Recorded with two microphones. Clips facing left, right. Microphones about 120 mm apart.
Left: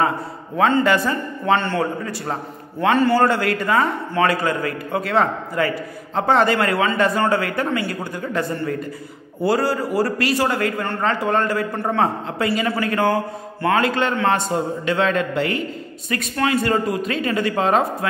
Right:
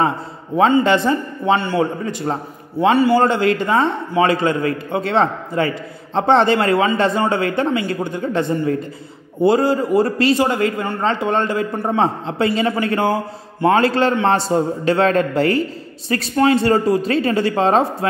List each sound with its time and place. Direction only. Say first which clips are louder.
0.6 s a man's voice: right 3 dB; 15° right (ahead or behind)
3.2 s a man's voice: right 3 dB; 20° right (ahead or behind)